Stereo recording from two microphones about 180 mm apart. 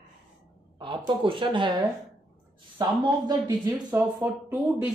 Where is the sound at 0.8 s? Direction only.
30° right (ahead or behind).